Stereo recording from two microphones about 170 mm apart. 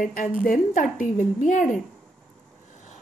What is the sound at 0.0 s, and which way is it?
Speech, 50° left (ahead or behind).